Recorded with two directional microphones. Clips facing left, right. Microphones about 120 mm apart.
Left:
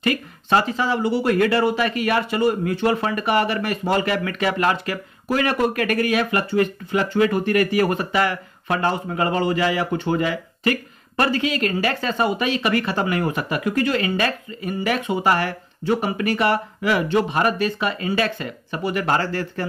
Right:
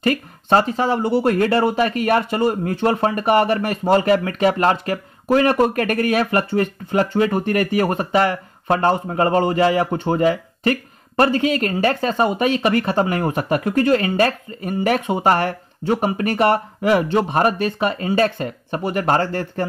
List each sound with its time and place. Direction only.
0.0 s speech: 35° right (ahead or behind)
16.9 s speech: 35° right (ahead or behind)
17.6 s speech: 45° right (ahead or behind)